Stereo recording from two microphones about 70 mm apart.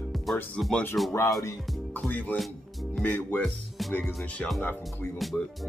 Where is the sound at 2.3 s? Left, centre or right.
Centre.